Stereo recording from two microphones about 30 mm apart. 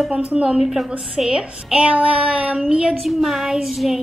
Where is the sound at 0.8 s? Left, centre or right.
Right.